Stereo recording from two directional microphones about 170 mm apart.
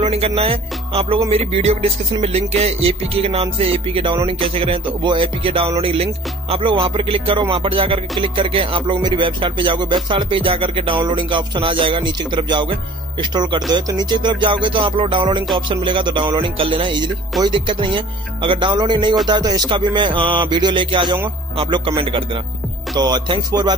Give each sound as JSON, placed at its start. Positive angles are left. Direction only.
{"t": 0.0, "sound": "music", "side_deg": -35}